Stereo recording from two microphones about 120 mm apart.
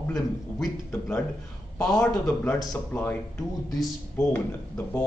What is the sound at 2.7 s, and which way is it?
Speech, 15° left (ahead or behind).